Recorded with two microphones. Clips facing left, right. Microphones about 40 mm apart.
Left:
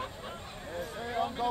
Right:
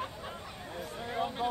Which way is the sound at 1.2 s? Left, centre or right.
Right.